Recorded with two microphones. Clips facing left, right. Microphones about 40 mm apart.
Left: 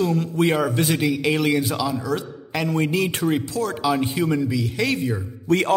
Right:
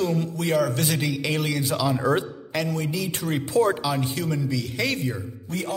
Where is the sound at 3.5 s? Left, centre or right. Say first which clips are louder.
Right 5 dB; right.